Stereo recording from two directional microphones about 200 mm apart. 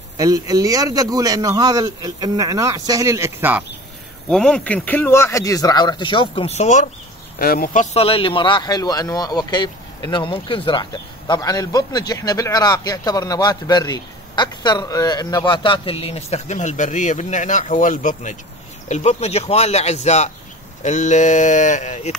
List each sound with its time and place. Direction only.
0.2 s a man's voice: 20° right (ahead or behind)
4.3 s speech: 5° left (ahead or behind); by 6.9 s 35° left (ahead or behind)
7.3 s speech: 50° left (ahead or behind)